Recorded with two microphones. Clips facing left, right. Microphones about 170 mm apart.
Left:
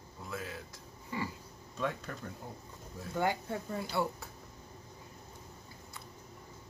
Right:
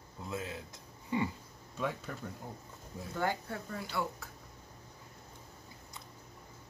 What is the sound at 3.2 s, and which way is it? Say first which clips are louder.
Speech: left 2 dB; 20° left (ahead or behind).